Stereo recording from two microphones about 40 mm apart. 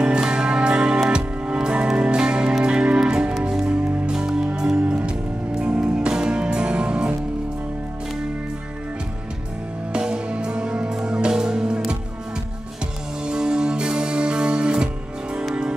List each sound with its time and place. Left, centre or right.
0.0 s music: right
9.9 s music: right
13.3 s music: right